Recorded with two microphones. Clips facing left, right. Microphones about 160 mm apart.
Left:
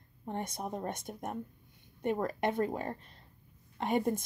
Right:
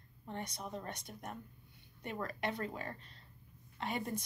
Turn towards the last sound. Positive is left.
turn(degrees=50)  # may be behind; listen again after turning